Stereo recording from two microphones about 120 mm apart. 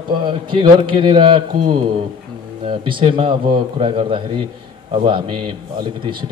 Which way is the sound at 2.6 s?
45° right (ahead or behind).